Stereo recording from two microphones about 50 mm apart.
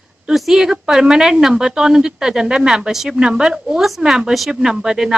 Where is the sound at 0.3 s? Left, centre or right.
Centre.